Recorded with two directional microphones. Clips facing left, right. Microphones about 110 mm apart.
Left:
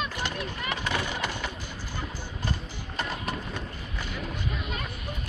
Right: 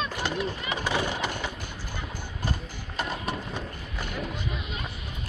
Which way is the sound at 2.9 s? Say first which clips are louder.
Right 1 dB; 5° right (ahead or behind).